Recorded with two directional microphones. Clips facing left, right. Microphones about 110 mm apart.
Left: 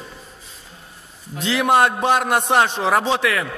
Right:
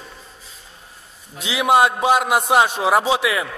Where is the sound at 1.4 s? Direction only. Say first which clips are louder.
Even; 5° right (ahead or behind).